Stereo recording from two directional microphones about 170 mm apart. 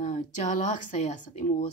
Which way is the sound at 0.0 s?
45° left (ahead or behind).